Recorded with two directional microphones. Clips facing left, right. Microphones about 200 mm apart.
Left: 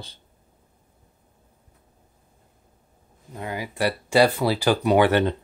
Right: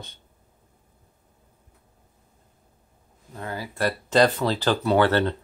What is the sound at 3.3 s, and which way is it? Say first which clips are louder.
Speech: left 2 dB; 15° left (ahead or behind).